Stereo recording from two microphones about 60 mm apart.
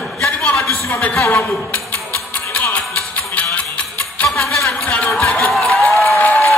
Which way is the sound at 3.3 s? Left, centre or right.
Left.